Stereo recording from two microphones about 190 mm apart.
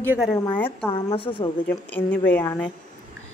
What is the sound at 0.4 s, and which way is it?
Speech, 10° left (ahead or behind).